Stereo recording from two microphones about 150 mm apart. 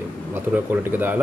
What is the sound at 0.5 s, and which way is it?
Speech, 10° right (ahead or behind).